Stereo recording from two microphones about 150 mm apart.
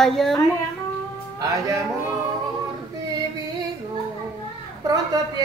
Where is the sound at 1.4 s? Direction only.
25° right (ahead or behind).